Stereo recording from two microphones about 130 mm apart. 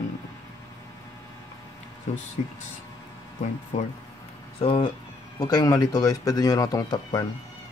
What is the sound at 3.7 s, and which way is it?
Speech, 60° left (ahead or behind).